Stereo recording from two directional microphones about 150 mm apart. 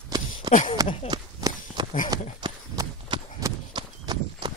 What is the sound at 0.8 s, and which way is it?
Speech, 25° right (ahead or behind).